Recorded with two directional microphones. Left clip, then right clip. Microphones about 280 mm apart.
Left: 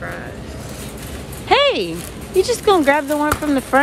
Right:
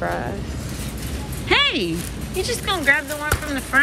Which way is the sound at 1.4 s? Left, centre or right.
Centre.